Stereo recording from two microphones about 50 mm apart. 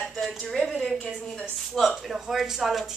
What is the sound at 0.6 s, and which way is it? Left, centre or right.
Speech, centre.